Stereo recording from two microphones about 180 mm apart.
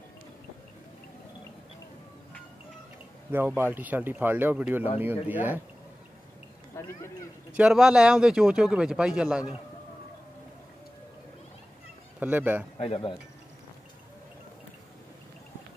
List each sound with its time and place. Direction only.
3.3 s speech: 10° right (ahead or behind)
6.7 s a sound: 15° left (ahead or behind)
7.5 s speech: 5° right (ahead or behind)
12.2 s speech: 10° right (ahead or behind)
12.7 s speech: 35° left (ahead or behind)